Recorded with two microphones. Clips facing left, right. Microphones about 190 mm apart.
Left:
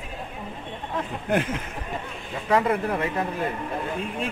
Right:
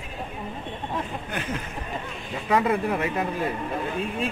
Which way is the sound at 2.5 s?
20° right (ahead or behind).